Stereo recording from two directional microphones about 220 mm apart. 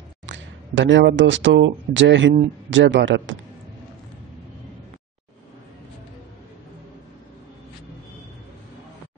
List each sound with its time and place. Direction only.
0.3 s speech: 55° right (ahead or behind)